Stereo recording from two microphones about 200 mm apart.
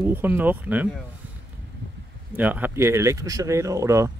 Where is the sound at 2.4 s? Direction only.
10° right (ahead or behind).